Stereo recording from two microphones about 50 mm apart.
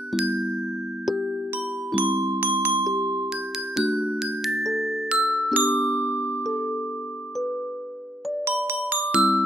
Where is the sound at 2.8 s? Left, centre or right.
Centre.